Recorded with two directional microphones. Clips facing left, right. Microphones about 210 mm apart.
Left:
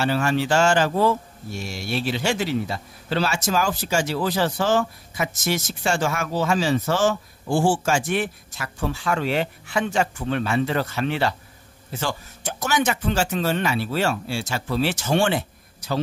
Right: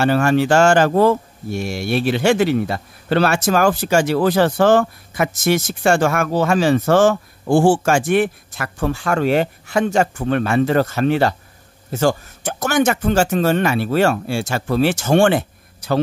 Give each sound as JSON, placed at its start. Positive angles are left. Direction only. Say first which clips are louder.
{"t": 0.0, "sound": "speech", "louder": "right 6 dB", "side_deg": -50}